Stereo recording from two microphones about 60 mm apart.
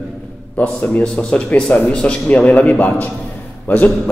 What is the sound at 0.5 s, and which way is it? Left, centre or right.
A man's voice, left.